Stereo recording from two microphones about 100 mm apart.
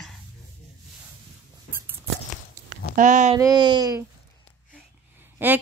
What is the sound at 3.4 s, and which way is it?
Speech, 45° right (ahead or behind).